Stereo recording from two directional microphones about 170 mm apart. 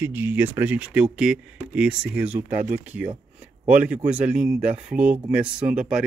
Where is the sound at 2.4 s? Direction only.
50° right (ahead or behind).